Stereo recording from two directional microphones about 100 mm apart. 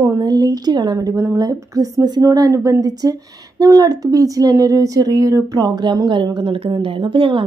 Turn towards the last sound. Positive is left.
turn(degrees=-60)  # may be behind; listen again after turning